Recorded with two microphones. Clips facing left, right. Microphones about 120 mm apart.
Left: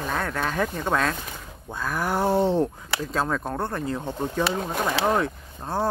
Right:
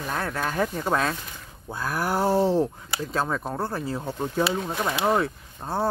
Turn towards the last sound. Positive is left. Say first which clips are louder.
# left 1 dB
turn(degrees=0)  # may be behind; listen again after turning